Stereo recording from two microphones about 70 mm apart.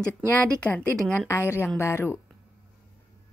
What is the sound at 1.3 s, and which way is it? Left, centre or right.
Speech, left.